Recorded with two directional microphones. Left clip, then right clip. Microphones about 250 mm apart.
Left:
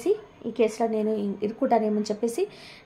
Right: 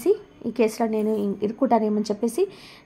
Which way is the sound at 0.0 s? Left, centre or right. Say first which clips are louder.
Right 3 dB; right.